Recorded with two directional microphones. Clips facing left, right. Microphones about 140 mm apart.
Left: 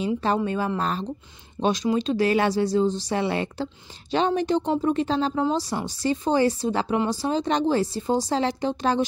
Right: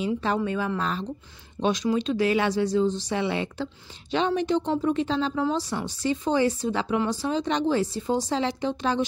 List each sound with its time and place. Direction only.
0.0 s speech: 35° left (ahead or behind)